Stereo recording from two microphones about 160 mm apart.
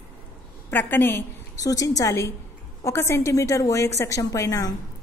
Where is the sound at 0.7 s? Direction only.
10° left (ahead or behind).